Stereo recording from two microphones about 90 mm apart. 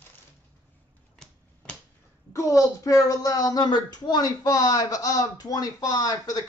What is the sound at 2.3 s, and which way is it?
Speech, 35° left (ahead or behind).